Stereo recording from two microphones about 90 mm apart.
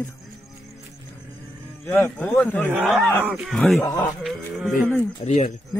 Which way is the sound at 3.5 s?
5° left (ahead or behind).